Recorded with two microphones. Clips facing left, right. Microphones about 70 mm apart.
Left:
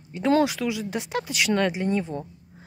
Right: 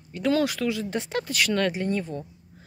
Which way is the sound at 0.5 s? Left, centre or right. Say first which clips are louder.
Right 1 dB; centre.